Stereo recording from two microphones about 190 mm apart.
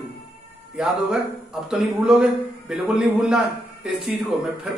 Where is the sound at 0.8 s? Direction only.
5° right (ahead or behind).